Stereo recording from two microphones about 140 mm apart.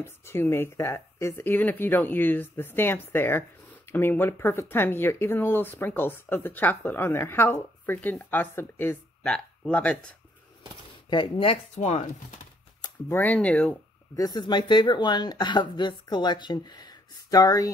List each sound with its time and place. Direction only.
0.0 s speech: 15° left (ahead or behind)
11.1 s speech: 35° left (ahead or behind); by 12.1 s 55° left (ahead or behind)
13.1 s speech: 10° left (ahead or behind)
14.1 s speech: 25° left (ahead or behind)